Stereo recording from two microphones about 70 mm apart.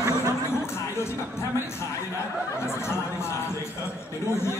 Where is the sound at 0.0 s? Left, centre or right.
Right.